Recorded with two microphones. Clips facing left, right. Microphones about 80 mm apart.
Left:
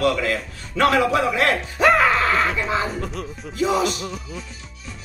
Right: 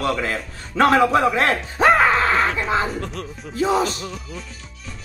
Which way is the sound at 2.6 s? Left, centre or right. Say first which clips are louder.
Right 2 dB; right.